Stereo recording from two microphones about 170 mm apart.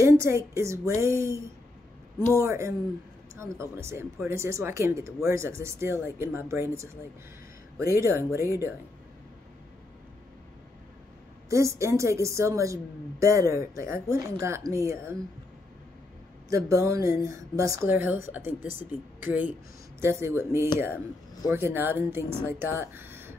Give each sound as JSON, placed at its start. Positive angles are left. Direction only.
{"t": 0.0, "sound": "a sound", "side_deg": -15}
{"t": 0.6, "sound": "a woman's voice", "side_deg": -15}
{"t": 8.0, "sound": "a woman's voice", "side_deg": -15}
{"t": 11.4, "sound": "a woman's voice", "side_deg": -15}
{"t": 16.4, "sound": "a woman's voice", "side_deg": -20}